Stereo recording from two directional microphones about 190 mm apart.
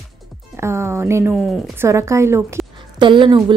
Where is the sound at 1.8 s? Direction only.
15° right (ahead or behind).